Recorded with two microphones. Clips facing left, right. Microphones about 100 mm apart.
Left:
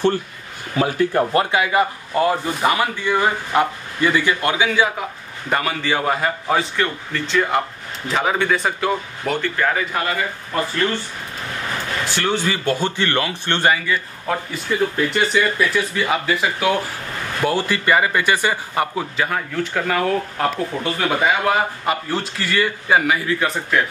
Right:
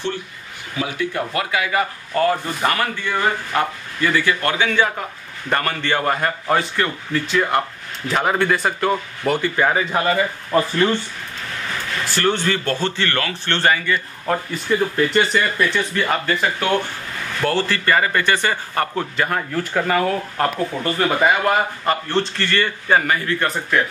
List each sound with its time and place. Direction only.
0.7 s speech: 40° left (ahead or behind); by 9.5 s centre (ahead or behind)
9.6 s speech: 20° right (ahead or behind)
12.0 s speech: centre (ahead or behind)
14.2 s speech: 5° left (ahead or behind)
19.1 s speech: centre (ahead or behind)